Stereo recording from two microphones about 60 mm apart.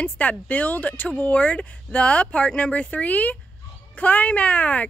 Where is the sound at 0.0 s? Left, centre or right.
Left.